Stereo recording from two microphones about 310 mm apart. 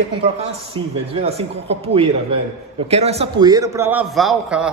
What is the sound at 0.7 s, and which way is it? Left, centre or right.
A man's voice, centre.